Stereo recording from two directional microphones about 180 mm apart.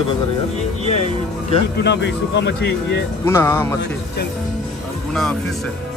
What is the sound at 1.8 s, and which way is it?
Speech, 70° left (ahead or behind).